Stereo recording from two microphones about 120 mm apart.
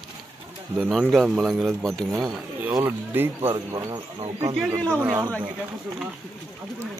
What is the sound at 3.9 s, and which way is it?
Speech, 60° right (ahead or behind).